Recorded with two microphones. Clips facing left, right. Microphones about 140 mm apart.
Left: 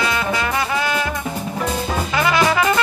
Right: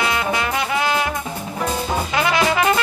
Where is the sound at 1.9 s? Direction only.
20° right (ahead or behind).